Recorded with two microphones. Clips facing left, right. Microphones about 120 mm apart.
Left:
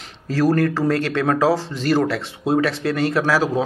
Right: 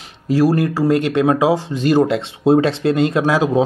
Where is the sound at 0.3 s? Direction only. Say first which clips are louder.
Right 3 dB; 15° right (ahead or behind).